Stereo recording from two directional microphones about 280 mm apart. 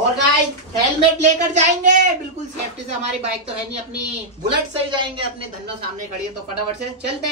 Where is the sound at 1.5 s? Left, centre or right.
Right.